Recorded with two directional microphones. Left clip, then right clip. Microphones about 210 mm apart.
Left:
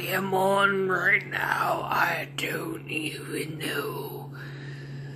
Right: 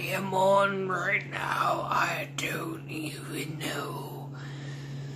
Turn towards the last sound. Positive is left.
turn(degrees=0)  # may be behind; listen again after turning